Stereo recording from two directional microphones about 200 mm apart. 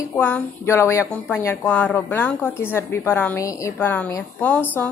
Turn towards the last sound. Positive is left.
turn(degrees=10)  # may be behind; listen again after turning